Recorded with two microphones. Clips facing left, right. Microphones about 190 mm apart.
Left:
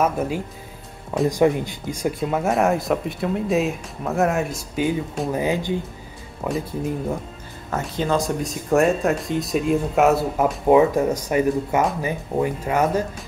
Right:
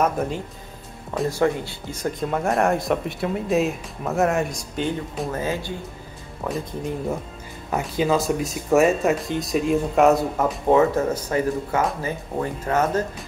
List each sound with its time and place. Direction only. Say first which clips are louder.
0.0 s speech: left 1 dB; 5° left (ahead or behind)
1.3 s speech: left 3 dB; 15° left (ahead or behind)
5.3 s speech: left 6 dB; 15° left (ahead or behind)
7.7 s speech: right 1 dB; 10° right (ahead or behind); by 13.0 s 10° left (ahead or behind)